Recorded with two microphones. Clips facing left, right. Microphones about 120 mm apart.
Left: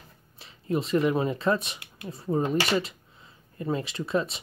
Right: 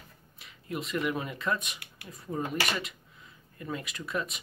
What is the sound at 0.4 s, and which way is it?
Speech, 30° left (ahead or behind).